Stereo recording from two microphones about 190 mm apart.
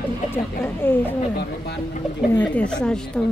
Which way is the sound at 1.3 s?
60° left (ahead or behind).